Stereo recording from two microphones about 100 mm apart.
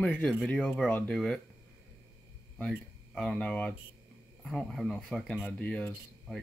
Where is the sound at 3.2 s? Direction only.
10° left (ahead or behind).